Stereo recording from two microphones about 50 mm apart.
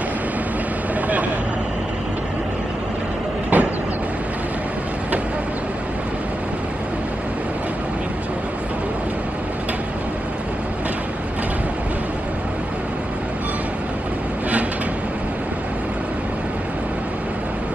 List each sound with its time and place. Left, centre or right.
3.5 s vehicle: right